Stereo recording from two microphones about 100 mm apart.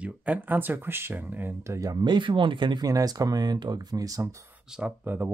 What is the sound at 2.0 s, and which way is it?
Speech, 50° right (ahead or behind).